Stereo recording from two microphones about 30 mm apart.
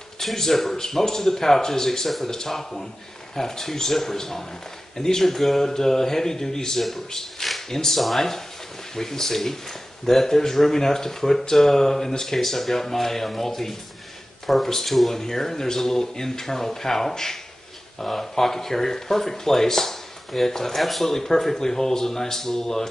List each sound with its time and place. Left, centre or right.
0.2 s speech: centre